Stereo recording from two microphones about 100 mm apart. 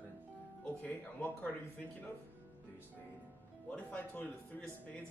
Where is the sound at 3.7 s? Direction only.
15° left (ahead or behind).